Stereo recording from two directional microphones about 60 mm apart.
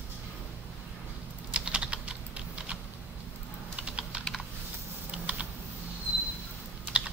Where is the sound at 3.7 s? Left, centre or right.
Centre.